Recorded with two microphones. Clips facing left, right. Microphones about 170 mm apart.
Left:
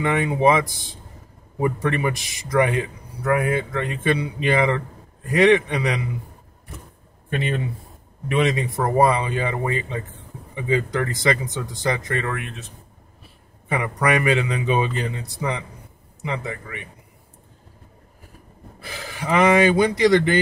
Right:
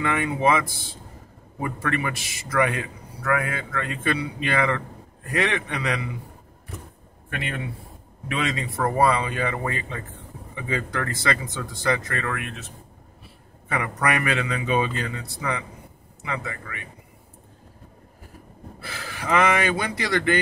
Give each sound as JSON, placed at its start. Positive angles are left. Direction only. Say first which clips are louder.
{"t": 0.0, "sound": "a man's voice", "louder": "left 4 dB", "side_deg": 20}
{"t": 7.2, "sound": "a man's voice", "louder": "left 6 dB", "side_deg": 25}
{"t": 13.7, "sound": "a man's voice", "louder": "left 3 dB", "side_deg": 20}
{"t": 16.3, "sound": "a man's voice", "louder": "left 3 dB", "side_deg": 25}
{"t": 18.8, "sound": "speech", "louder": "left 3 dB", "side_deg": 15}